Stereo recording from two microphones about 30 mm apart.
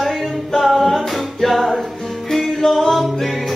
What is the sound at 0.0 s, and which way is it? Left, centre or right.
A capella, centre.